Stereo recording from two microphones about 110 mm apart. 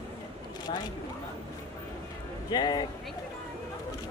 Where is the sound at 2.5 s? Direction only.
40° left (ahead or behind).